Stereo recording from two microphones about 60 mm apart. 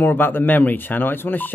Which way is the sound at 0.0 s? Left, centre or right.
Left.